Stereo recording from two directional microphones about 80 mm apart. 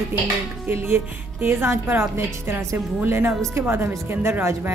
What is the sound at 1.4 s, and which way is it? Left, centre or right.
A woman's voice, right.